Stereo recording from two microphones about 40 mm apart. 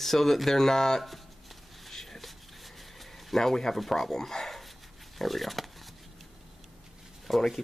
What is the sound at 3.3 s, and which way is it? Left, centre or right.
Speech, centre.